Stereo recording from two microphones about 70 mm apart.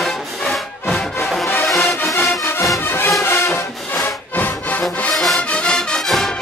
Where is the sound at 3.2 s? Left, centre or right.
Left.